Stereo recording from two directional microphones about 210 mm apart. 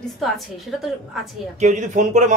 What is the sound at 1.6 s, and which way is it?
Speech, 35° right (ahead or behind).